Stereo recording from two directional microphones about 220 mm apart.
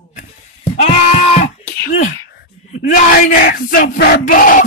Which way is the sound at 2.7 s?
40° left (ahead or behind).